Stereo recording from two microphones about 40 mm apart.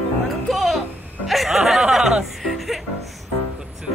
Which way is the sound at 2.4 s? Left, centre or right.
Centre.